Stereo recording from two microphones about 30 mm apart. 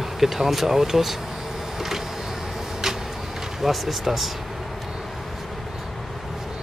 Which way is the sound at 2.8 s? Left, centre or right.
Centre.